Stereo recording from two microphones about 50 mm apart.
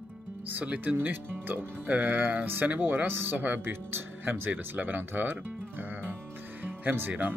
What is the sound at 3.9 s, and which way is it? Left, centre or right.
Music, right.